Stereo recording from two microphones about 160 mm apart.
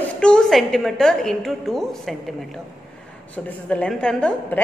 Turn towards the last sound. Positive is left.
turn(degrees=5)  # may be behind; listen again after turning